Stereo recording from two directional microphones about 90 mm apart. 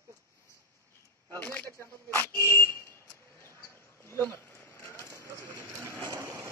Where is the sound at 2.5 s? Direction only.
25° left (ahead or behind).